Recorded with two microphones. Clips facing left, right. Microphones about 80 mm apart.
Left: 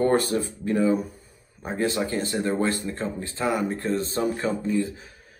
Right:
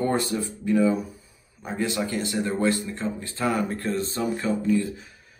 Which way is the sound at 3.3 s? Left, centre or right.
Left.